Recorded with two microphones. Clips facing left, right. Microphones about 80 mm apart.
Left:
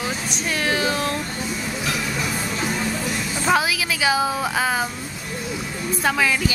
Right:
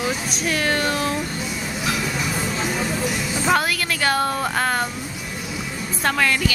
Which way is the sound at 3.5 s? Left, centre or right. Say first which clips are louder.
Left 1 dB; centre.